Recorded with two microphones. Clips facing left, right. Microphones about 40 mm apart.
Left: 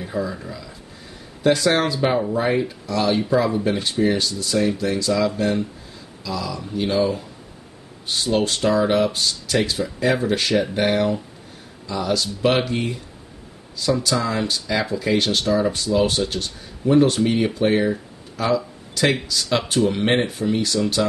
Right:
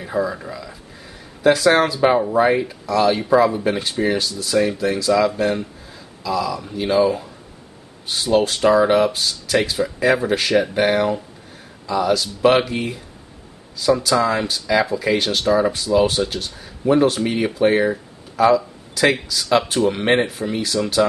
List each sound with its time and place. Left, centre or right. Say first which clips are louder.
0.0 s speech: right 4 dB; centre
1.4 s speech: right 3 dB; centre